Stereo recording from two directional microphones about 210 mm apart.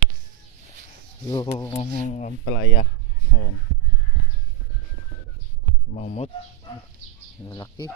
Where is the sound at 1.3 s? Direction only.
15° left (ahead or behind).